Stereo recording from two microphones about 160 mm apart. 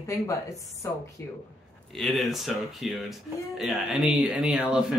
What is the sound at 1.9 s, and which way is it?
Speech, centre (ahead or behind).